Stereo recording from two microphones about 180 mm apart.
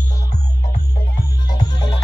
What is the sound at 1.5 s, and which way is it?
Music, 25° left (ahead or behind).